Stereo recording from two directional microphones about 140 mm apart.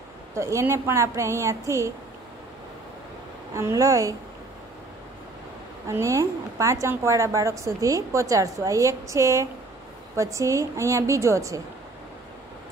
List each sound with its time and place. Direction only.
0.3 s a woman's voice: 20° right (ahead or behind)
3.5 s a woman's voice: 20° right (ahead or behind)
5.9 s a woman's voice: 20° right (ahead or behind)